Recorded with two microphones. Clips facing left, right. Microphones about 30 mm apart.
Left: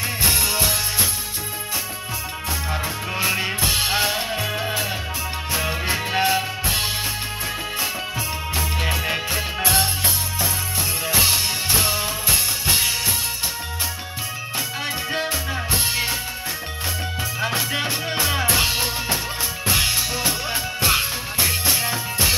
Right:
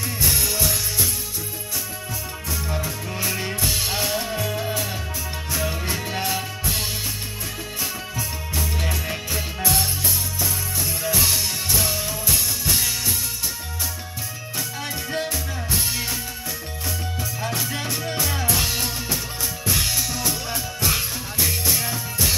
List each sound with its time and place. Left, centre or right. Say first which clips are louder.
0.2 s music: left 2 dB; left
2.7 s music: left 3 dB; left
8.5 s music: left 2 dB; left
15.0 s music: left 3 dB; left
17.4 s music: left 5 dB; left